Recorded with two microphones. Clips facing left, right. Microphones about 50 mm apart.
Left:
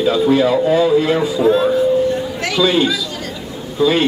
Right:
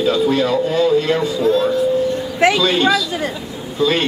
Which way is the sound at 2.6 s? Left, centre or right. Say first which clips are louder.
Even; centre.